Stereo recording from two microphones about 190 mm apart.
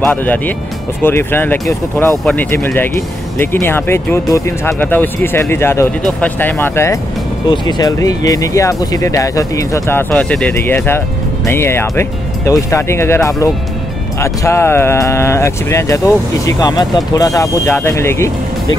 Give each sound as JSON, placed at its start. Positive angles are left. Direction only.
{"t": 0.0, "sound": "speech", "side_deg": 10}